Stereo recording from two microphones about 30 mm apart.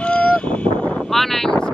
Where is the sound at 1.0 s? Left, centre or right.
Centre.